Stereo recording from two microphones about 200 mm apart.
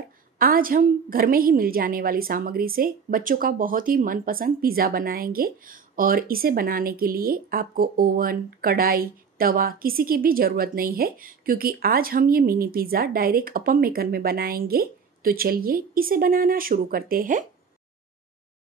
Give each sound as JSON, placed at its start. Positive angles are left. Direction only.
{"t": 0.4, "sound": "a woman's voice", "side_deg": -45}